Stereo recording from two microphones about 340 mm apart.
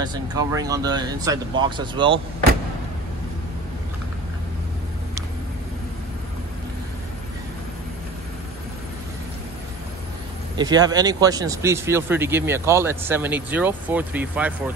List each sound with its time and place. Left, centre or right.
0.0 s speech: centre
10.5 s speech: centre